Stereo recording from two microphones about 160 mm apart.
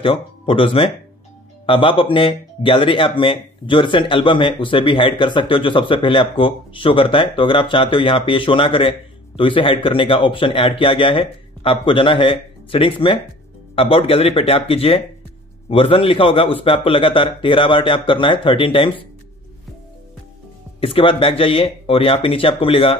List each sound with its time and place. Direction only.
0.0 s speech: 35° left (ahead or behind)
20.8 s speech: 35° left (ahead or behind)